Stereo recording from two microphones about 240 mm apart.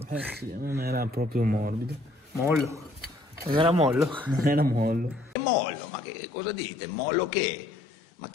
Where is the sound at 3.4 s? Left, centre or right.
Right.